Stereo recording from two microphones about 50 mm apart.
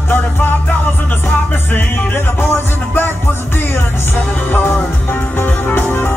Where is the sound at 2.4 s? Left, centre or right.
Left.